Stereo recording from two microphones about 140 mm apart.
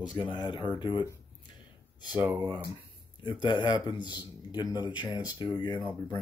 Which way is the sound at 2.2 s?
10° right (ahead or behind).